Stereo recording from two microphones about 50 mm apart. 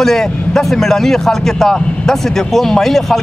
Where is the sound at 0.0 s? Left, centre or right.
Centre.